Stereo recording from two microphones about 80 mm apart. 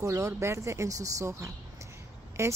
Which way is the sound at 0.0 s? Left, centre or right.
Right.